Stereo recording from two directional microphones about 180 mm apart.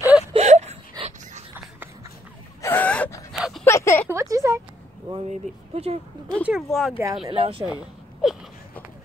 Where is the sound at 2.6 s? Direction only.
10° left (ahead or behind).